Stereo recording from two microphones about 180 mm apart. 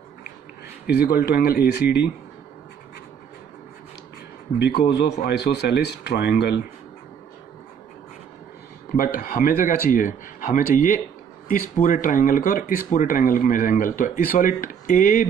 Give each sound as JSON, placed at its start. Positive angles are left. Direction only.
{"t": 0.8, "sound": "speech", "side_deg": 60}
{"t": 4.6, "sound": "speech", "side_deg": 65}
{"t": 8.9, "sound": "speech", "side_deg": 50}